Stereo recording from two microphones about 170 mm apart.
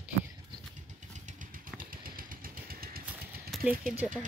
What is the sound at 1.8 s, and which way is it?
Vehicle, 55° right (ahead or behind).